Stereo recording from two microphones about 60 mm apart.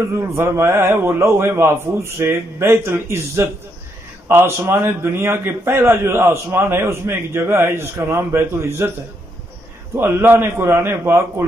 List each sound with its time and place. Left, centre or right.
0.1 s a man's voice: right
4.6 s a man's voice: right
9.9 s a man's voice: right
11.1 s a man's voice: right